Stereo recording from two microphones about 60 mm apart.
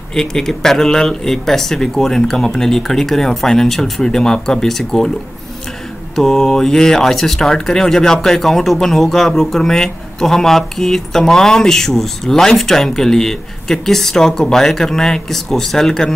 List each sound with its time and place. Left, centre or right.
0.1 s speech: centre
6.1 s speech: centre